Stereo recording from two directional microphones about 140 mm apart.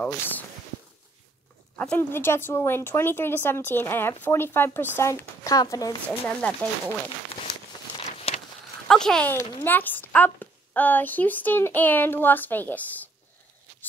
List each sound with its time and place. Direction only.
0.0 s a woman's voice: 10° left (ahead or behind)
1.8 s a woman's voice: 15° left (ahead or behind)
6.0 s a woman's voice: 10° left (ahead or behind)
8.3 s a sound: 45° left (ahead or behind)
8.8 s speech: 5° left (ahead or behind)
9.3 s a woman's voice: 15° left (ahead or behind)